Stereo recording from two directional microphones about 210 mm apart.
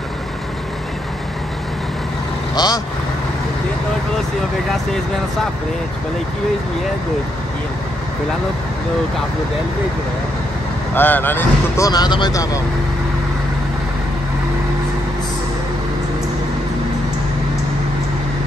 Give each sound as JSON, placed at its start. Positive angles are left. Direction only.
{"t": 2.5, "sound": "speech", "side_deg": 20}
{"t": 11.0, "sound": "a man's voice", "side_deg": 10}